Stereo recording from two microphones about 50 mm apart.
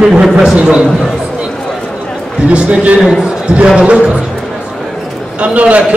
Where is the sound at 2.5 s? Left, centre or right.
Right.